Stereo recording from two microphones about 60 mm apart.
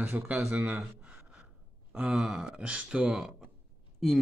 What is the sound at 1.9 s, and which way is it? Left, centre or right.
Speech, centre.